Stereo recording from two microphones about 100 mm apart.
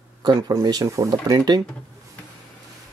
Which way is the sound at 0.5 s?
40° right (ahead or behind).